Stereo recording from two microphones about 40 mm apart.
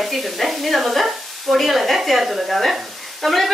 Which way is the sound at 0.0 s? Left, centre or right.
Centre.